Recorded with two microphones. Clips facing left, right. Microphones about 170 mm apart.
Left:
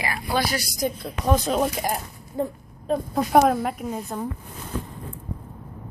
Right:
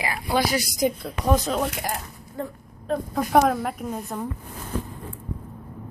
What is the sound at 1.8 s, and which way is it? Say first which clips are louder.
Speech: left 3 dB; 15° left (ahead or behind).